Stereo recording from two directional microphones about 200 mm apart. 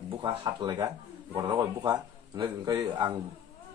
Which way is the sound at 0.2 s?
25° right (ahead or behind).